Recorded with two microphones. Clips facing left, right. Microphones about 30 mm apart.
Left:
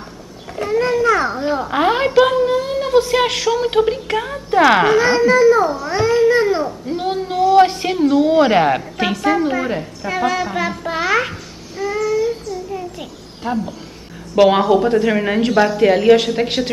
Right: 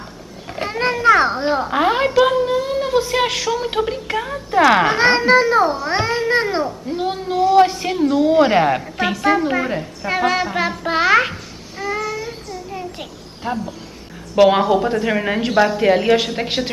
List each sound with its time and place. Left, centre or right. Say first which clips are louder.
0.6 s speech: left 4 dB; right
1.7 s a woman's voice: left 3 dB; centre
4.9 s speech: even; right
6.1 s babbling: left 7 dB; right
6.9 s a woman's voice: left 1 dB; centre
10.0 s a woman's voice: right 1 dB; right
10.4 s music: even; centre
11.1 s babbling: right 3 dB; centre
12.0 s child singing: left 7 dB; centre
13.4 s a woman's voice: left 2 dB; centre